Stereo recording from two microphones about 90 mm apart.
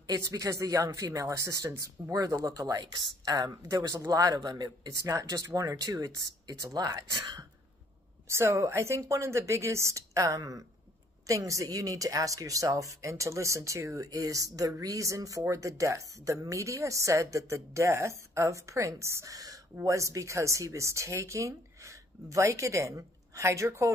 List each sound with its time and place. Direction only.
0.0 s speech: 40° right (ahead or behind)
8.3 s speech: 30° right (ahead or behind)